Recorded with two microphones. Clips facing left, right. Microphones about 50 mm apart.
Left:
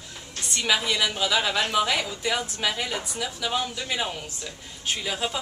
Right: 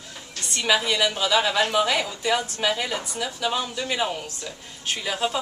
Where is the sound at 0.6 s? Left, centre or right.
Centre.